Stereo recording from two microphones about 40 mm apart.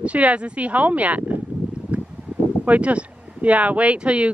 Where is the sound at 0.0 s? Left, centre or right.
Right.